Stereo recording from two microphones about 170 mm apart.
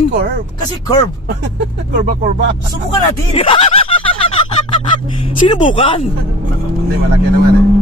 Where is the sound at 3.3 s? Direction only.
35° left (ahead or behind).